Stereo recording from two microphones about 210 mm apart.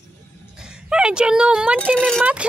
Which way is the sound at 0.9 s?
5° right (ahead or behind).